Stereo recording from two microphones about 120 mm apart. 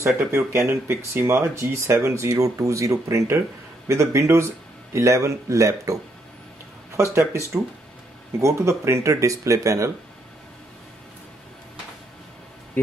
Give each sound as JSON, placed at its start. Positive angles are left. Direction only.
{"t": 0.0, "sound": "speech", "side_deg": -20}
{"t": 7.0, "sound": "speech", "side_deg": -25}